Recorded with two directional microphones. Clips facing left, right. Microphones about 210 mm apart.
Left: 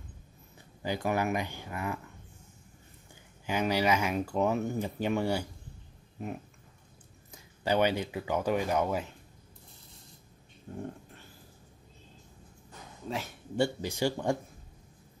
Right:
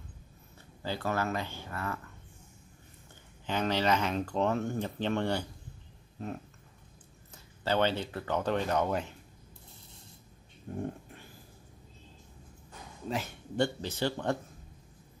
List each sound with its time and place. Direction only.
0.8 s speech: 15° left (ahead or behind)
3.4 s speech: 10° left (ahead or behind)
7.6 s speech: 15° left (ahead or behind)
13.1 s speech: centre (ahead or behind)